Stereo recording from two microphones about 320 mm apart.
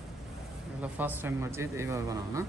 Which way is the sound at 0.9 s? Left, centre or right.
Centre.